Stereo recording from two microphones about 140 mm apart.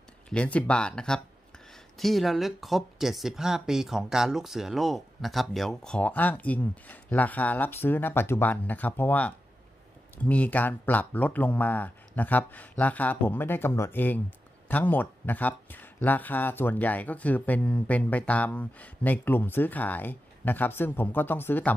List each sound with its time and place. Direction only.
0.3 s speech: 10° left (ahead or behind)